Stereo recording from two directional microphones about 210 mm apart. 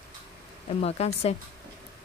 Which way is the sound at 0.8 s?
30° left (ahead or behind).